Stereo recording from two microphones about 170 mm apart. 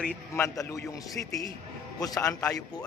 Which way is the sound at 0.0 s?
10° left (ahead or behind).